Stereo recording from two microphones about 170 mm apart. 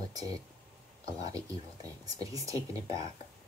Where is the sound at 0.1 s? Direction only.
20° right (ahead or behind).